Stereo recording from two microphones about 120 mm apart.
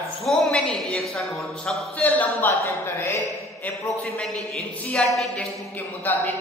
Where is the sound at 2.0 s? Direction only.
15° left (ahead or behind).